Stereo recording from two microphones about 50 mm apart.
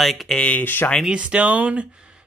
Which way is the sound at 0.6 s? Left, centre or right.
Left.